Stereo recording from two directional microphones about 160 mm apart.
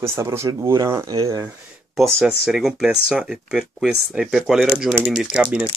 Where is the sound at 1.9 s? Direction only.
Centre (ahead or behind).